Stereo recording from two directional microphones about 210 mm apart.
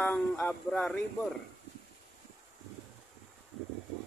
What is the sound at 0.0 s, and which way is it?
Speech, 10° left (ahead or behind).